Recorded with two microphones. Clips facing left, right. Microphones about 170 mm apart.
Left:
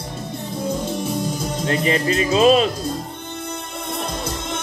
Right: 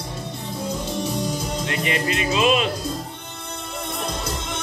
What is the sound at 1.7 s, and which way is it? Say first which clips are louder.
Speech: left 6 dB; 35° left (ahead or behind).